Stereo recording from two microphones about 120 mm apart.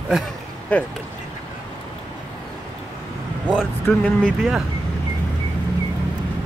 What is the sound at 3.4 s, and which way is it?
Speech, 5° right (ahead or behind).